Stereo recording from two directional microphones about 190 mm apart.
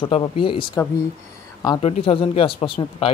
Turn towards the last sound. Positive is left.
turn(degrees=30)  # may be behind; listen again after turning